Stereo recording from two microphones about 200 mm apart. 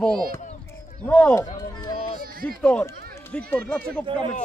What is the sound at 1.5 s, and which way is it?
Speech, 15° left (ahead or behind).